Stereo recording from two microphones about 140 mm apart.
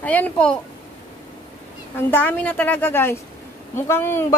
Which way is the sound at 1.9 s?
15° left (ahead or behind).